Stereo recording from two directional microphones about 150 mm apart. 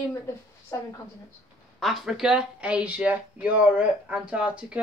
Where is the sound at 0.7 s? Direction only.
20° left (ahead or behind).